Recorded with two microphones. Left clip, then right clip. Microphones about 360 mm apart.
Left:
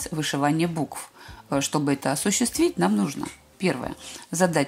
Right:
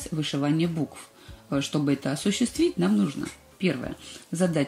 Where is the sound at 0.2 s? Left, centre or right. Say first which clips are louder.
Left 3 dB; centre.